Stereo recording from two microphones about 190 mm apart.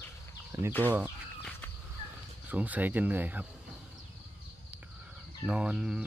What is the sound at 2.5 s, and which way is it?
Speech, 10° right (ahead or behind).